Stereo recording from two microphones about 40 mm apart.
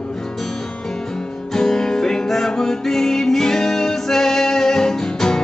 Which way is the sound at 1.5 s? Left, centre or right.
Centre.